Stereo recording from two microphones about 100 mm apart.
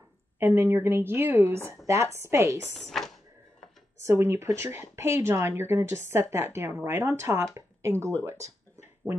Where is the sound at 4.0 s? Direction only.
25° right (ahead or behind).